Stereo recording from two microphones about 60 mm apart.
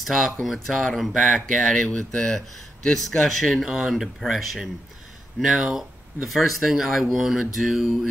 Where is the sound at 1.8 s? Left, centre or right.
Centre.